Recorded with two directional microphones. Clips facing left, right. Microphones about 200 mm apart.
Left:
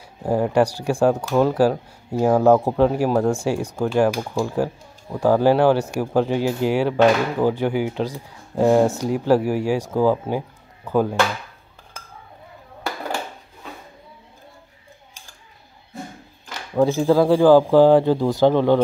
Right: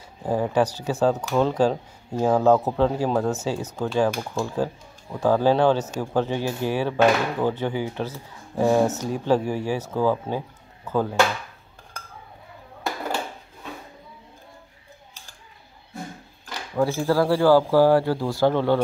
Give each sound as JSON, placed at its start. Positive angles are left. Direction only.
{"t": 0.2, "sound": "speech", "side_deg": 10}
{"t": 16.7, "sound": "speech", "side_deg": 20}